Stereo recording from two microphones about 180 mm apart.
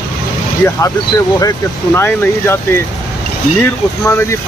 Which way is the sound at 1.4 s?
15° left (ahead or behind).